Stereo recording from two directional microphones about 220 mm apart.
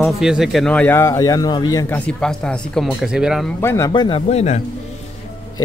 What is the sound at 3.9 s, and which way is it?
Speech, 20° left (ahead or behind).